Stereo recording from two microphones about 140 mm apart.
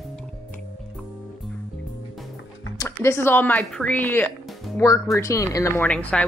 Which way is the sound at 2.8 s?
20° left (ahead or behind).